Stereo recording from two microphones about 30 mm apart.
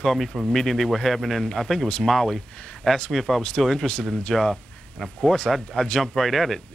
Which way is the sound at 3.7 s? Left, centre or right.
Centre.